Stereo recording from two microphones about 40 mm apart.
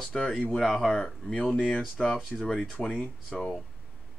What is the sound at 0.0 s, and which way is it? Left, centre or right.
Speech, centre.